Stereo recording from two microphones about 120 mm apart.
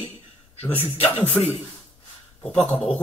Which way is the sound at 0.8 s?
55° left (ahead or behind).